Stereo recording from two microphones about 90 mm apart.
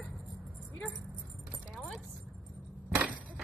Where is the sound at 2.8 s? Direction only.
15° right (ahead or behind).